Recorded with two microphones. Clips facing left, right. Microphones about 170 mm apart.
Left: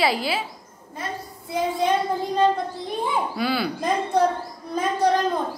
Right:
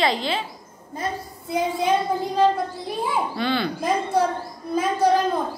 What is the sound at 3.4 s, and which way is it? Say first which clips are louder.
Speech: right 1 dB; 5° left (ahead or behind).